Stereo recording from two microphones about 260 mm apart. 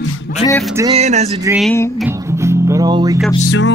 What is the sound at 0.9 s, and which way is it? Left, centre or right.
Music, right.